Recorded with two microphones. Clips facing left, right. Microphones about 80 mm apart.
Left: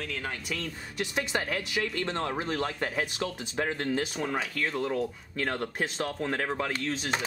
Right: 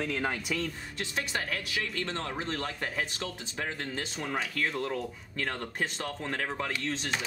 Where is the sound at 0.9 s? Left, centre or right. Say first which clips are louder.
Left 6 dB; centre.